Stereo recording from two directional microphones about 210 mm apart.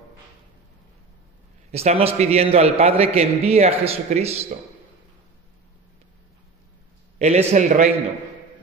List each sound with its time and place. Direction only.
1.7 s a man's voice: 30° right (ahead or behind)
7.2 s a man's voice: 30° right (ahead or behind)